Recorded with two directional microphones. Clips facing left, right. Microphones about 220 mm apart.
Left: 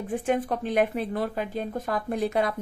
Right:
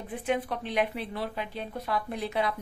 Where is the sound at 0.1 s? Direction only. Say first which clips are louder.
Left 4 dB; 45° left (ahead or behind).